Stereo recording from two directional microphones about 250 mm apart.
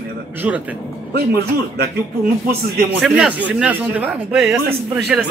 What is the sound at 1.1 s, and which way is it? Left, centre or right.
Speech, right.